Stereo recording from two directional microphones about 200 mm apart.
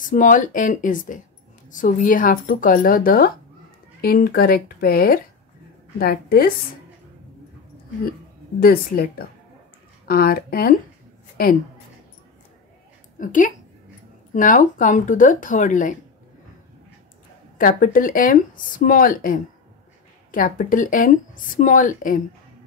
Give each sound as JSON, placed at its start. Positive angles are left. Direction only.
{"t": 0.0, "sound": "speech", "side_deg": 40}
{"t": 8.5, "sound": "speech", "side_deg": 50}
{"t": 13.2, "sound": "speech", "side_deg": 40}
{"t": 17.6, "sound": "speech", "side_deg": 45}